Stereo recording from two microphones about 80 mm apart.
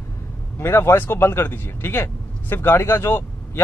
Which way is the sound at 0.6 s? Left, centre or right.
Left.